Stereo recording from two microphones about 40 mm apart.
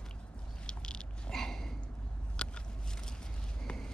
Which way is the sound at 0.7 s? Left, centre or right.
Left.